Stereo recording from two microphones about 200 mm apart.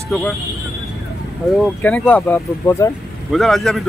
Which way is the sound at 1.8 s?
10° left (ahead or behind).